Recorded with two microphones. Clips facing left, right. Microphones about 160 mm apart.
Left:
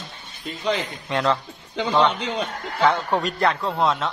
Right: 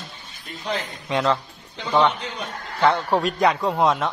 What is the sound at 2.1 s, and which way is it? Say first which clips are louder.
Speech: left 4 dB; 90° left.